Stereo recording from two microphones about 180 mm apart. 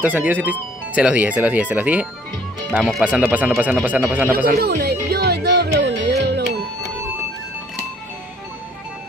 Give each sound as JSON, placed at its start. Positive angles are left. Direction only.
{"t": 0.0, "sound": "speech", "side_deg": -10}
{"t": 4.6, "sound": "music", "side_deg": -60}